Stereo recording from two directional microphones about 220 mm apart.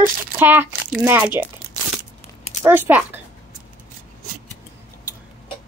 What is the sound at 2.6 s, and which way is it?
Speech, 10° right (ahead or behind).